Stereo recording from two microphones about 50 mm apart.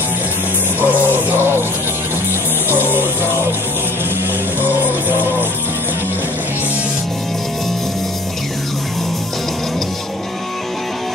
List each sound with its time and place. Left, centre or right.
0.7 s music: right
2.7 s music: right
4.6 s music: right